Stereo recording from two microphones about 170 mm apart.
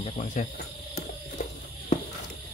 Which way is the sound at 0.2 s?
45° left (ahead or behind).